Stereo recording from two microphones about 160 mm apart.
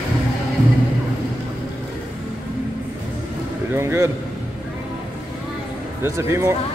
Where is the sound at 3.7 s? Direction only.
20° right (ahead or behind).